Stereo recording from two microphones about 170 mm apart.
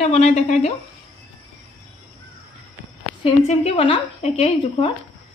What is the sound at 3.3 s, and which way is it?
Speech, 35° left (ahead or behind).